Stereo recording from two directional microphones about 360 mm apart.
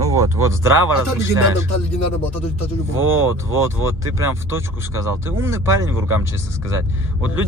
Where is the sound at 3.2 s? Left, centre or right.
Right.